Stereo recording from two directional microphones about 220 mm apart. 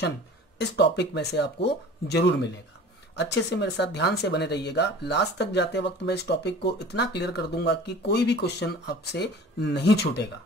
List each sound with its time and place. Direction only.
0.6 s speech: 50° left (ahead or behind)